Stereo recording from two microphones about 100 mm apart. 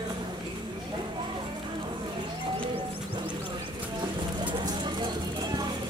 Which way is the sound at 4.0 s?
55° right (ahead or behind).